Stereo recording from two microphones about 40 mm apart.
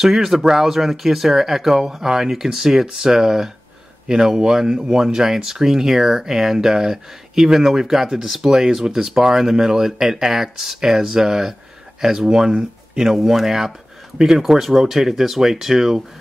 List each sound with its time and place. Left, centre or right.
0.0 s speech: centre